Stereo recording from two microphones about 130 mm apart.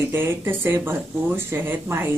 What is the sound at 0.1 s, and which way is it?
A woman's voice, 15° right (ahead or behind).